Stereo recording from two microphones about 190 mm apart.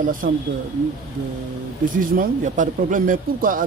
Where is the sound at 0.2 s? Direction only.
45° right (ahead or behind).